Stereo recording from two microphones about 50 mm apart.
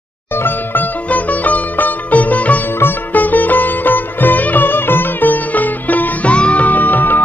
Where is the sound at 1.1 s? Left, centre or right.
Left.